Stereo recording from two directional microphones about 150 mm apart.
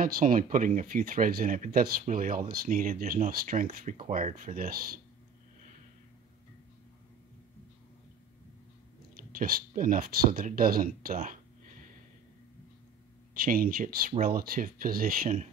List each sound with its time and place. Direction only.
0.0 s speech: 70° right (ahead or behind)
9.4 s speech: 70° right (ahead or behind)
13.3 s speech: 70° right (ahead or behind)